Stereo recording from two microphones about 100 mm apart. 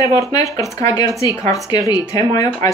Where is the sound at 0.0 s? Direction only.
35° left (ahead or behind).